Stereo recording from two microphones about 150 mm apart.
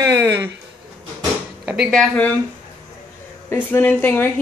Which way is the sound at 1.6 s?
10° right (ahead or behind).